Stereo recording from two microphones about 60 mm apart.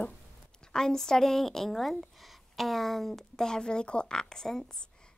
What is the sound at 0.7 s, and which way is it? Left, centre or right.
A woman's voice, centre.